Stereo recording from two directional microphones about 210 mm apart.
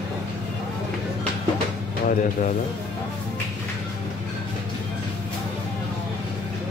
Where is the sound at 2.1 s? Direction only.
40° left (ahead or behind).